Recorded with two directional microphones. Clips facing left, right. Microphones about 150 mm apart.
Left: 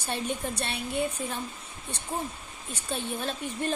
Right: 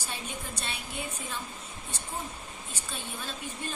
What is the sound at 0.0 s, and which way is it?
Speech, 65° left (ahead or behind).